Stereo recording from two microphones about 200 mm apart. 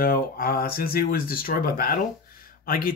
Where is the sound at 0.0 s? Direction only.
45° left (ahead or behind).